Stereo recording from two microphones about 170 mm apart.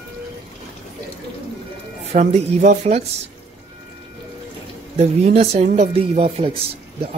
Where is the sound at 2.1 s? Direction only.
45° right (ahead or behind).